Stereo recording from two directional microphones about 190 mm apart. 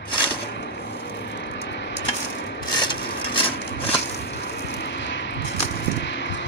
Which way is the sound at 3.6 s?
65° left (ahead or behind).